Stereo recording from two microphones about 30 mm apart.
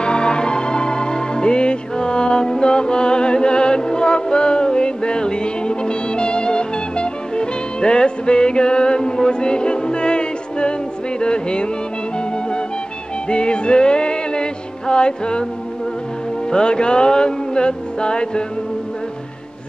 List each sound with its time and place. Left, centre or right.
0.0 s music: left
13.3 s music: left
16.4 s music: left